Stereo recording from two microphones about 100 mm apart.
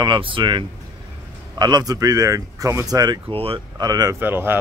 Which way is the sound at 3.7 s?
40° right (ahead or behind).